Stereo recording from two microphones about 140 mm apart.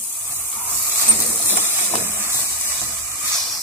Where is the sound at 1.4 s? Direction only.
15° right (ahead or behind).